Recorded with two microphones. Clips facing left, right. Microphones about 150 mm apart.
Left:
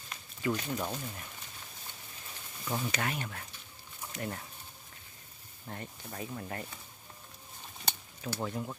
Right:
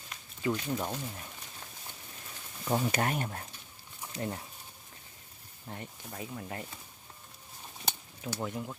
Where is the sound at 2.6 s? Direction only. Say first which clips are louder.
Right 5 dB; 35° right (ahead or behind).